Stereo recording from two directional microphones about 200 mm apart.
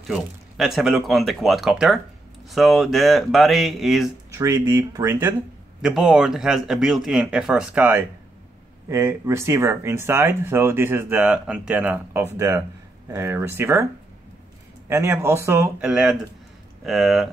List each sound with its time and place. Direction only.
0.1 s speech: centre (ahead or behind)
4.4 s speech: 15° right (ahead or behind)
5.8 s speech: centre (ahead or behind)
14.9 s speech: 10° right (ahead or behind)
15.8 s speech: 5° right (ahead or behind)